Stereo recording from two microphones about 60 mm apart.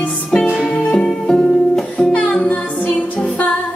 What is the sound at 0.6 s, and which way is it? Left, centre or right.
Music, centre.